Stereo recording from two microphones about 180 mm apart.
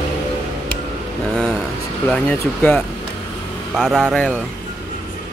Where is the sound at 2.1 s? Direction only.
10° left (ahead or behind).